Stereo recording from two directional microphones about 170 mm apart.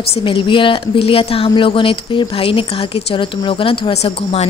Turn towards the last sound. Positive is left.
turn(degrees=35)  # may be behind; listen again after turning